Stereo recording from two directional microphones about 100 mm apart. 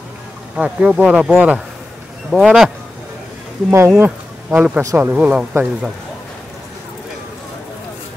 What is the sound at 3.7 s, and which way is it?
Speech, 20° right (ahead or behind).